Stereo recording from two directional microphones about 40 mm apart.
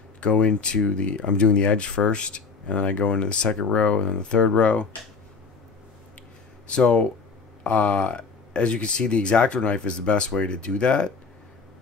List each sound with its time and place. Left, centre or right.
0.2 s speech: left
6.7 s speech: left